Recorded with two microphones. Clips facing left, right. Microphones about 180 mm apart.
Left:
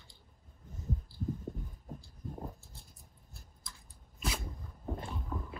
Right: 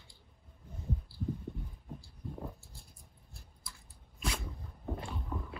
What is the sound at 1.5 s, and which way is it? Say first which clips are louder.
Heart sounds: left 1 dB; 40° left (ahead or behind).